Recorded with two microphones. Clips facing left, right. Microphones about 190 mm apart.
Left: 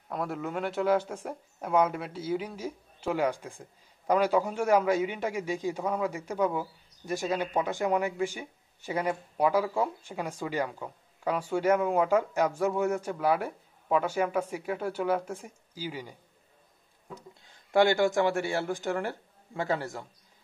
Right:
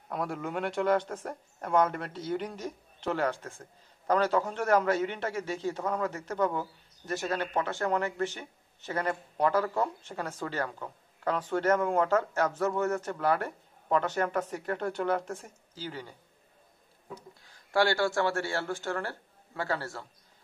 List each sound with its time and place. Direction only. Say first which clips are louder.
0.1 s a man's voice: left 1 dB; centre (ahead or behind)
17.1 s speech: even; 20° left (ahead or behind)